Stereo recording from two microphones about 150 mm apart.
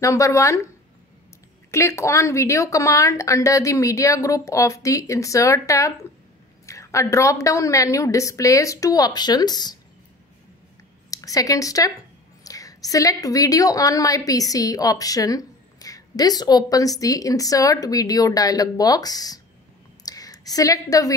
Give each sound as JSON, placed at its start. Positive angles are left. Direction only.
{"t": 0.0, "sound": "a woman's voice", "side_deg": 20}
{"t": 1.7, "sound": "a woman's voice", "side_deg": 20}
{"t": 11.1, "sound": "a woman's voice", "side_deg": 20}
{"t": 20.1, "sound": "a sound", "side_deg": 25}